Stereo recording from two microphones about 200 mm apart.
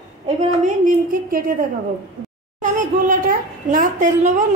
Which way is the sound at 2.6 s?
40° right (ahead or behind).